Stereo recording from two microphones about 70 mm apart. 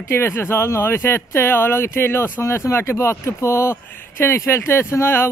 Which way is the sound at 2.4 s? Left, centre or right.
Left.